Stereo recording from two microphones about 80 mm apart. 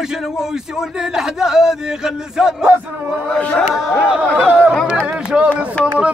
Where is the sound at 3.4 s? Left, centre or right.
Centre.